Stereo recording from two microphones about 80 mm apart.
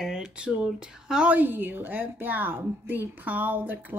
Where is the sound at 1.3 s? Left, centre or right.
Right.